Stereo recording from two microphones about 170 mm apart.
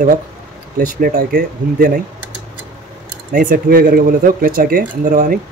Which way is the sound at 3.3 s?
55° right (ahead or behind).